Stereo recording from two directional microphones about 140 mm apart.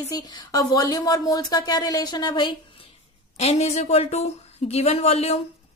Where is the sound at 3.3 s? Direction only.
50° left (ahead or behind).